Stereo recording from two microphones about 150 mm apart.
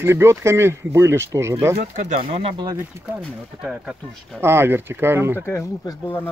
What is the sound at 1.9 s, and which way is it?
Speech, 60° right (ahead or behind).